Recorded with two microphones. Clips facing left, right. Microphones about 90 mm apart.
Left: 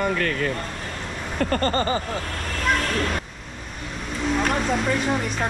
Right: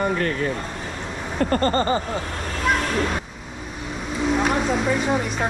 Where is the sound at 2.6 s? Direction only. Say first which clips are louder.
Right 2 dB; 5° right (ahead or behind).